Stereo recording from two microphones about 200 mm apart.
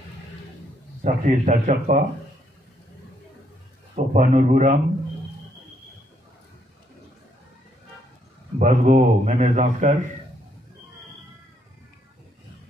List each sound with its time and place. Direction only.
1.0 s a man's voice: 40° right (ahead or behind)
3.9 s a man's voice: 35° right (ahead or behind)
8.5 s a man's voice: 35° right (ahead or behind)